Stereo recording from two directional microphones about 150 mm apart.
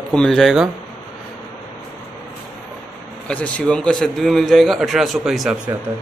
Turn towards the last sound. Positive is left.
turn(degrees=0)  # may be behind; listen again after turning